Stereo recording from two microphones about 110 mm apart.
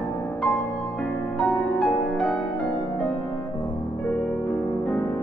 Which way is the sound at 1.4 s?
5° left (ahead or behind).